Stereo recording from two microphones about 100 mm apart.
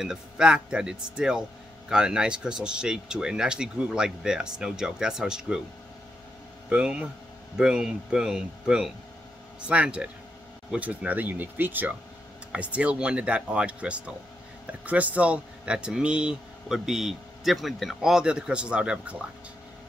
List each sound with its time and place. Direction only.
0.0 s speech: 5° right (ahead or behind)
6.7 s speech: 10° right (ahead or behind)